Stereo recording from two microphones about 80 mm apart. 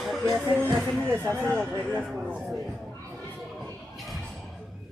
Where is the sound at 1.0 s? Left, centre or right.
Right.